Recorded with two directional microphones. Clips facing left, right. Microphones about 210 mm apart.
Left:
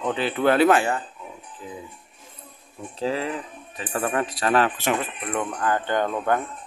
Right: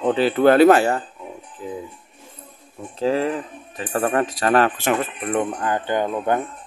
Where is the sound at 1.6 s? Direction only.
50° right (ahead or behind).